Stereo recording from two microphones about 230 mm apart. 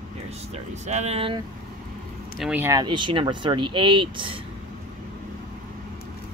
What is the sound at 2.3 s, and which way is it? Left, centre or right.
Speech, centre.